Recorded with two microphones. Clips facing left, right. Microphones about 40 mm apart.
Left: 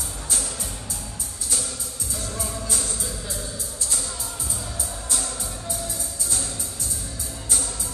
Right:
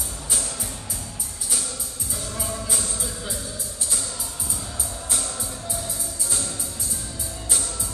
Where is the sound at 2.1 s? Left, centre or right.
Centre.